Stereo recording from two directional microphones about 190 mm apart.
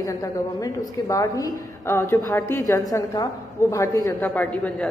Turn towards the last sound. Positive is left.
turn(degrees=5)  # may be behind; listen again after turning